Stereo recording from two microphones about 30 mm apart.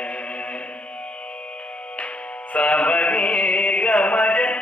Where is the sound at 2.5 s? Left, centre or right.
Left.